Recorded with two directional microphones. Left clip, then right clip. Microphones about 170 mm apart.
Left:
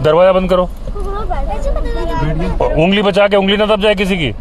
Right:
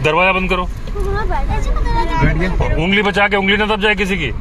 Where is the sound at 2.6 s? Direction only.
55° left (ahead or behind).